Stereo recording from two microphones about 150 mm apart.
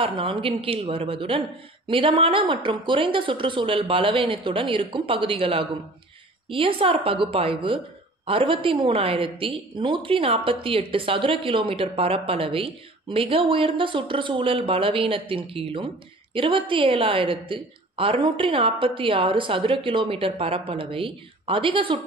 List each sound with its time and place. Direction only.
0.0 s a woman's voice: 35° right (ahead or behind)